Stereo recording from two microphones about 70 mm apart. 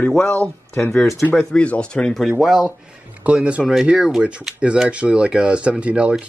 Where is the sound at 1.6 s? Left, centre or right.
Centre.